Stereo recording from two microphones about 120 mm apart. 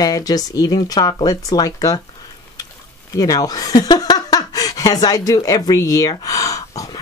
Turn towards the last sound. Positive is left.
turn(degrees=30)  # may be behind; listen again after turning